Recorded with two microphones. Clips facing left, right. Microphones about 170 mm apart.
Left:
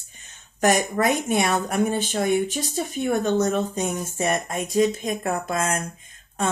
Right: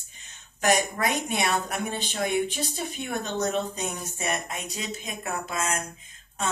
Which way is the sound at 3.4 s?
50° left (ahead or behind).